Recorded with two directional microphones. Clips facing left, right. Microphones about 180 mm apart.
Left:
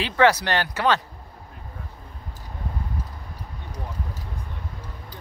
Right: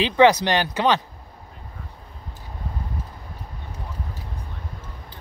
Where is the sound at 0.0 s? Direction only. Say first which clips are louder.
Right 3 dB; 20° right (ahead or behind).